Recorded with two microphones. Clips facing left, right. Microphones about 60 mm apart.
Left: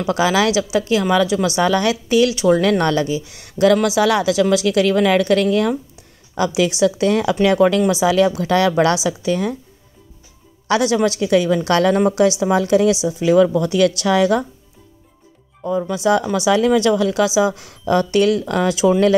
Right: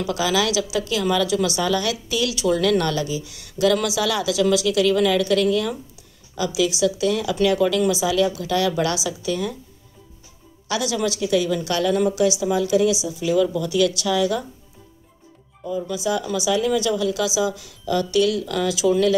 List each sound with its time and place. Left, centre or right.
0.0 s a woman's voice: left
10.7 s a woman's voice: left
15.6 s a woman's voice: left